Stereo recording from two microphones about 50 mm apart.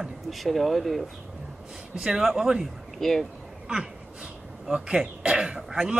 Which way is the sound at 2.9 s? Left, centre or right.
Centre.